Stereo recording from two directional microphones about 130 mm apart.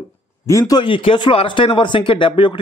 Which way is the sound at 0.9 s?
40° left (ahead or behind).